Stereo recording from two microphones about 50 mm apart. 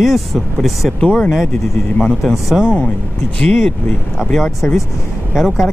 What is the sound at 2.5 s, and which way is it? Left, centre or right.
Speech, centre.